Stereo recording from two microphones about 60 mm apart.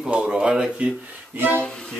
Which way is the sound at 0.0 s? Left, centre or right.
Centre.